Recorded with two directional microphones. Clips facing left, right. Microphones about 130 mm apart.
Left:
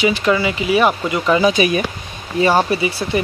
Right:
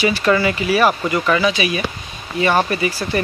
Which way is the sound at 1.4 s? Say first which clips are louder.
Left 4 dB; 40° left (ahead or behind).